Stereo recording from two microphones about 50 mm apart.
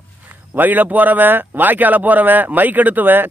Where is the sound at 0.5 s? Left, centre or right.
Right.